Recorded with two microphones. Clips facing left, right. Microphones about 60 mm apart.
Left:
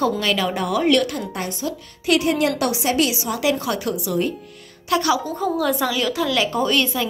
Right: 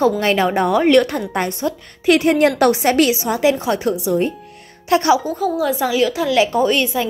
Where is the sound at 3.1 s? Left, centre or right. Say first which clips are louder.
Right 5 dB; right.